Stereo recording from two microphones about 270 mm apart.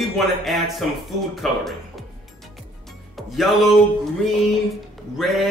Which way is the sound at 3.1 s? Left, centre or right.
Centre.